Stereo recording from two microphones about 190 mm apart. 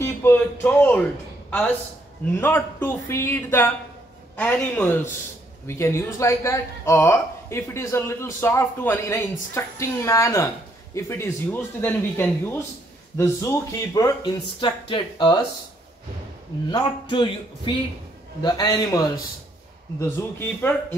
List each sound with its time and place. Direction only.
0.0 s speech: 10° left (ahead or behind)
16.7 s speech: 25° left (ahead or behind)